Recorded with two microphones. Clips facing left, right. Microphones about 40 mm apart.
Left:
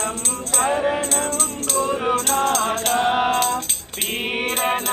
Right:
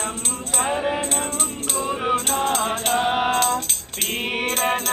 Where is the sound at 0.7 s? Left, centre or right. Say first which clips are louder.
Left 2 dB; centre.